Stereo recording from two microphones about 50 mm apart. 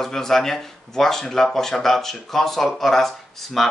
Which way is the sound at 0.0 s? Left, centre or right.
Centre.